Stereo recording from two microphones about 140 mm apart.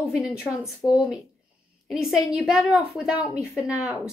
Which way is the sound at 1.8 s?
Centre (ahead or behind).